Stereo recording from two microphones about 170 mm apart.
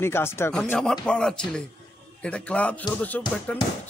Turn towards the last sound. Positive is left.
turn(degrees=10)  # may be behind; listen again after turning